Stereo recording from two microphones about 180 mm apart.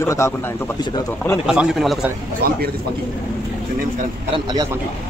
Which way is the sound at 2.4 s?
60° right (ahead or behind).